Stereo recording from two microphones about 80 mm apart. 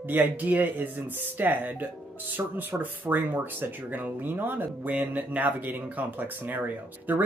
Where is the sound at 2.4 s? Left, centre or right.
Right.